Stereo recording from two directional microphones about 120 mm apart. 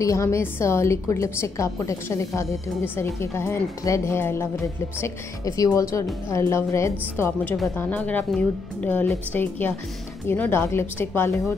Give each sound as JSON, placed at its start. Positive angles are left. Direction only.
{"t": 0.0, "sound": "a woman's voice", "side_deg": 25}